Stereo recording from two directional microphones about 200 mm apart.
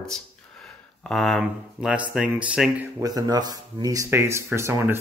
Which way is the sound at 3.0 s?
20° right (ahead or behind).